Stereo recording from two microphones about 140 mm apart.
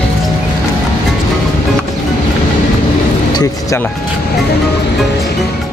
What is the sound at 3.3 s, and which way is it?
Speech, 30° left (ahead or behind).